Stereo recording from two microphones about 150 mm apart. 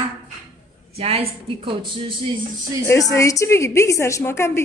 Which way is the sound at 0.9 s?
40° right (ahead or behind).